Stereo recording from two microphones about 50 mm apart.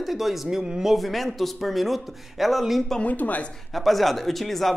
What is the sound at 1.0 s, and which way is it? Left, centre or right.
Speech, centre.